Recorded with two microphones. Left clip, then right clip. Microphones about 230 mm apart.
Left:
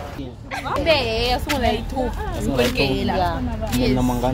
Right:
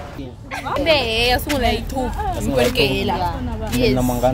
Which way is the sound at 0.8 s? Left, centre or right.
Right.